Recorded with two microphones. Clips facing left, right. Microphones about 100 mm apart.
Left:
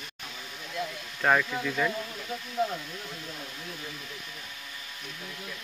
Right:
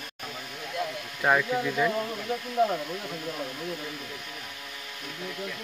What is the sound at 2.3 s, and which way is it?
Speech, 60° right (ahead or behind).